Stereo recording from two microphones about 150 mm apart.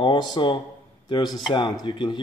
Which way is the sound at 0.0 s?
30° left (ahead or behind).